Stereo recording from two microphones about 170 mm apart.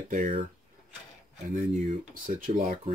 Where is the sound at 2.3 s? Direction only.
60° right (ahead or behind).